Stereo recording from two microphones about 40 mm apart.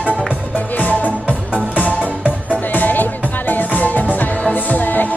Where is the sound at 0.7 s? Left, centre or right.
Left.